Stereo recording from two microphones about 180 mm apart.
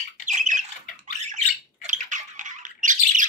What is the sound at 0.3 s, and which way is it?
Squawk, 40° right (ahead or behind).